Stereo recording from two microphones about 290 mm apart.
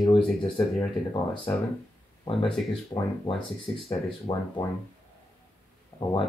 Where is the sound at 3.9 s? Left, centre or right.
Centre.